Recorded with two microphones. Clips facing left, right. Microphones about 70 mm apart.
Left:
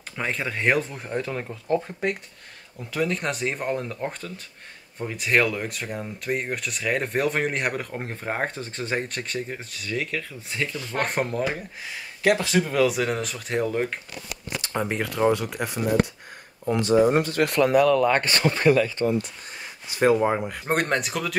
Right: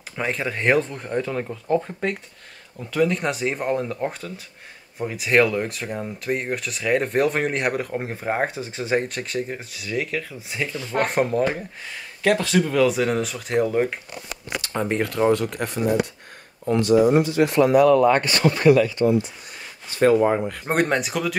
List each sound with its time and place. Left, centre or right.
0.1 s speech: centre
11.0 s speech: centre
16.8 s speech: left
17.6 s speech: right
19.0 s speech: right
19.9 s speech: centre
20.6 s speech: centre